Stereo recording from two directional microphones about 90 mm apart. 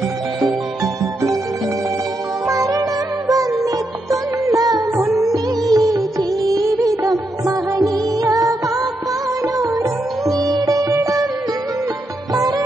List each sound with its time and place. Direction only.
2.4 s music: 35° right (ahead or behind)
10.3 s sitar: 50° right (ahead or behind)
12.4 s music: 45° right (ahead or behind)